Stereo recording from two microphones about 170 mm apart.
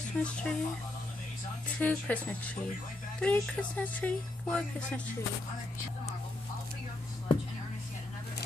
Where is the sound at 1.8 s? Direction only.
10° left (ahead or behind).